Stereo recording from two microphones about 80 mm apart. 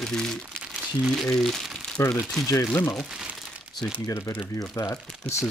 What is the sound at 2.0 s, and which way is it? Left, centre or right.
Speech, left.